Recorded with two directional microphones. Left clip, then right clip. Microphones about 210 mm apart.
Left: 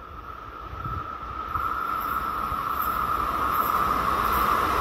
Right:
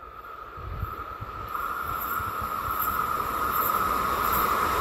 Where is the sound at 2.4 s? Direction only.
55° right (ahead or behind).